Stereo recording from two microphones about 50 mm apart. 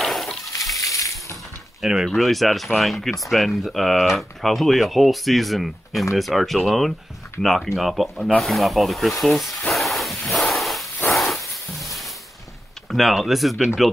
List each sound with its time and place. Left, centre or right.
0.0 s water: centre
0.7 s coin: left
1.8 s speech: centre
2.0 s speech: centre
9.8 s dog: centre
11.1 s a sound: centre
12.9 s speech: centre